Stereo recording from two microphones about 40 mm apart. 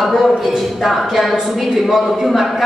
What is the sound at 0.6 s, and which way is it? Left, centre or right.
A woman's voice, centre.